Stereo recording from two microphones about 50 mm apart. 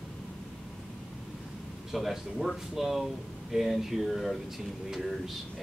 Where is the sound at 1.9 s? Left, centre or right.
Centre.